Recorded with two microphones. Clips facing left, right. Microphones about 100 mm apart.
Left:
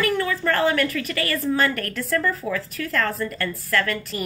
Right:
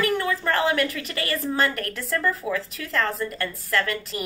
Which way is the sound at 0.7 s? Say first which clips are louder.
Left 2 dB; 20° right (ahead or behind).